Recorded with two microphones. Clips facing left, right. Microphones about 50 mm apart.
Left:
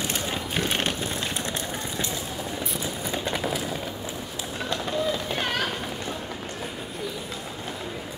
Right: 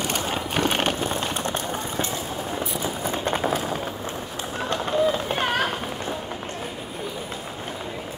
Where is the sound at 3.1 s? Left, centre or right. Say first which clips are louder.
Right 4 dB; right.